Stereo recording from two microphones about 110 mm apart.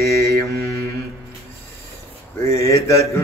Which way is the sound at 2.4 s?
25° left (ahead or behind).